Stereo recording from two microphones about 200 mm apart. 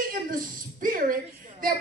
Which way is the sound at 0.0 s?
45° right (ahead or behind).